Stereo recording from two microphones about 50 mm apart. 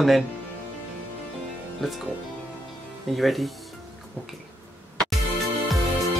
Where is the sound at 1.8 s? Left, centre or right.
Centre.